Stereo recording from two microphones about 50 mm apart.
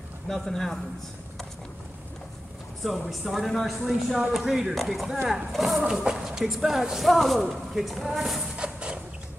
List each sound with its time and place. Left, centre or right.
0.3 s speech: centre
3.1 s speech: centre
5.8 s speech: centre
8.5 s a sound: right